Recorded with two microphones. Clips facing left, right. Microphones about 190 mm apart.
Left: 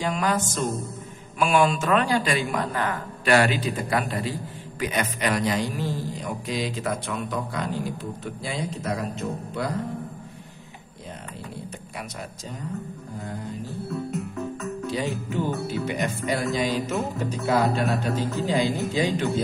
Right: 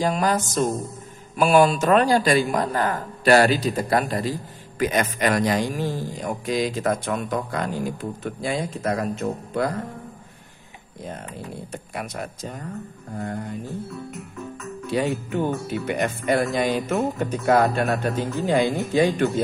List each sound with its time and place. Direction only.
0.0 s music: 40° right (ahead or behind)
1.4 s speech: 40° right (ahead or behind)
11.9 s speech: 50° right (ahead or behind)
14.9 s speech: 55° right (ahead or behind)